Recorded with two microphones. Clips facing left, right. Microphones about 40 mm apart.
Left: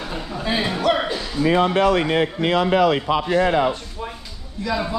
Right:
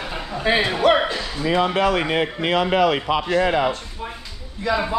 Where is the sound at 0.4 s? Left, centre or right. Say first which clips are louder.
Right 4 dB; right.